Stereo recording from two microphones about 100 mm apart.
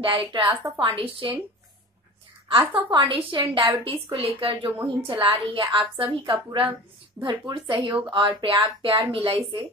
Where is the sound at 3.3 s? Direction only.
45° right (ahead or behind).